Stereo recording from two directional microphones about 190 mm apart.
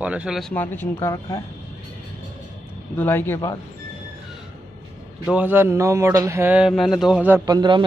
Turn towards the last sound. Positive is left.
turn(degrees=-25)  # may be behind; listen again after turning